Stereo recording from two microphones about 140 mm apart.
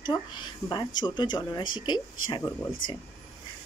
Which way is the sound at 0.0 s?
30° left (ahead or behind).